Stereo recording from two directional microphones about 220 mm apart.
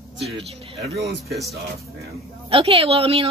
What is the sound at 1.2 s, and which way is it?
Speech, centre (ahead or behind).